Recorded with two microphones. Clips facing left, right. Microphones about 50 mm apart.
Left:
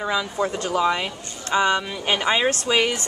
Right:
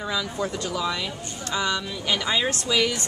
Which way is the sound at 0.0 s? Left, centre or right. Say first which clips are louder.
Left 4 dB; left.